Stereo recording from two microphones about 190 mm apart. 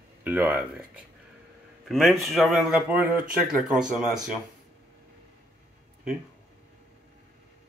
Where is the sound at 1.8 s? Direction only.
Centre (ahead or behind).